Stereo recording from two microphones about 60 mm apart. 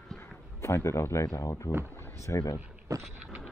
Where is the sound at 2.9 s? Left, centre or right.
Right.